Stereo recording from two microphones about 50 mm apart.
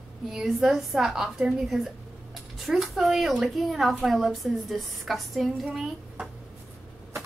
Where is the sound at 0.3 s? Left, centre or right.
Centre.